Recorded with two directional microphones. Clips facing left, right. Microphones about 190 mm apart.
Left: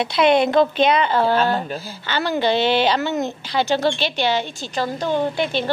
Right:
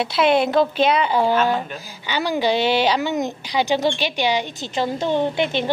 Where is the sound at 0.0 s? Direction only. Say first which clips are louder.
Left 1 dB; 5° right (ahead or behind).